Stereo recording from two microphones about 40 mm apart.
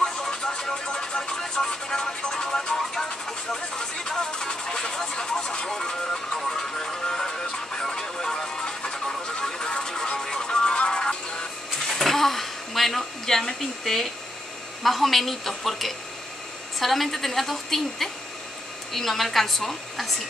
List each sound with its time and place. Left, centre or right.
0.0 s music: centre
11.8 s a sound: centre
14.8 s a woman's voice: centre